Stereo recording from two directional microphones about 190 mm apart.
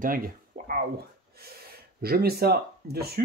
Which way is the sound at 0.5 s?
50° right (ahead or behind).